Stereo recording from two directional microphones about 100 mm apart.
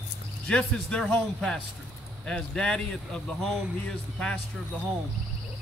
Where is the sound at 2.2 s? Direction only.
10° left (ahead or behind).